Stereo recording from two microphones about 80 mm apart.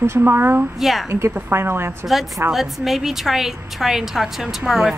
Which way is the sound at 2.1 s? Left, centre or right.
Centre.